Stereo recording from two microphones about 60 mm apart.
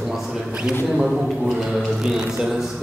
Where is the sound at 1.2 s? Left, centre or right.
Centre.